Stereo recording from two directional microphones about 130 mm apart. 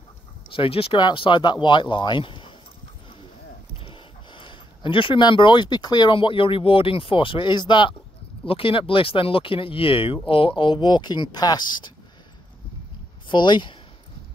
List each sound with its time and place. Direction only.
0.5 s speech: 45° left (ahead or behind)
3.7 s speech: 40° left (ahead or behind)
13.3 s speech: 35° left (ahead or behind)